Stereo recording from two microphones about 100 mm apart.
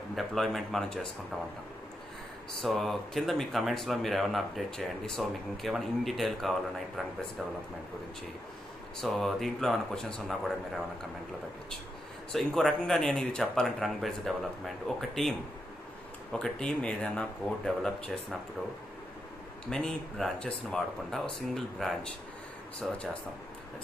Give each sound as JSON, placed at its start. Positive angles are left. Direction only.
{"t": 0.1, "sound": "speech", "side_deg": 0}
{"t": 2.6, "sound": "speech", "side_deg": 0}
{"t": 9.0, "sound": "speech", "side_deg": 0}
{"t": 12.3, "sound": "speech", "side_deg": 5}
{"t": 16.3, "sound": "speech", "side_deg": 5}
{"t": 19.7, "sound": "speech", "side_deg": 5}